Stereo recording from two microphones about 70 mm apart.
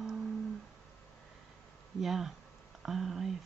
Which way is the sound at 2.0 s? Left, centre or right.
Centre.